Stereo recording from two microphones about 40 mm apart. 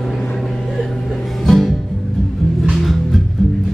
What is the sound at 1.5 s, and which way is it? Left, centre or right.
Music, centre.